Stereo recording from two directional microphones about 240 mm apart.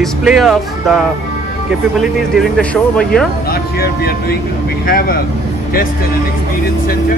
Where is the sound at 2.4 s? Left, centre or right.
Centre.